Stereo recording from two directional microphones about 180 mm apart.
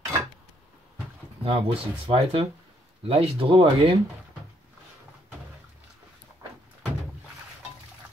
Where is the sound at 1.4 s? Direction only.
30° right (ahead or behind).